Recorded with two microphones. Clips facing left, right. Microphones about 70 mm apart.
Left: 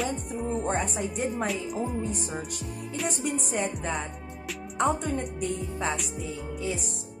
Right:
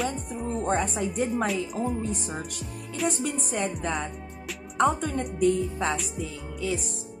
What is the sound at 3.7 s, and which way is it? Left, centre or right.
A woman's voice, centre.